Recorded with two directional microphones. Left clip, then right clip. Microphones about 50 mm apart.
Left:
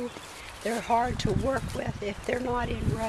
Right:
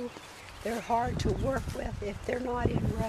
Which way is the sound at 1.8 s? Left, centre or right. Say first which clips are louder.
Left 4 dB; right.